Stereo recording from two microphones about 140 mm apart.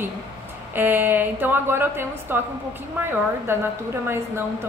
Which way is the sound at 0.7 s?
15° right (ahead or behind).